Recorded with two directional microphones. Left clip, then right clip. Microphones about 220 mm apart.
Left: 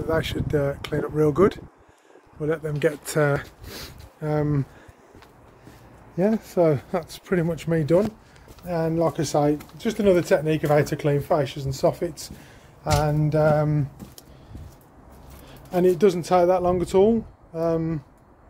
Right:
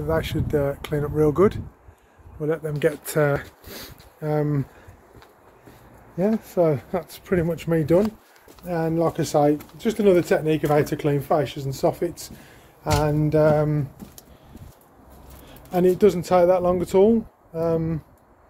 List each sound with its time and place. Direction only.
0.1 s speech: 5° right (ahead or behind)
6.4 s speech: 20° left (ahead or behind)
7.2 s speech: centre (ahead or behind)
15.7 s speech: 5° left (ahead or behind)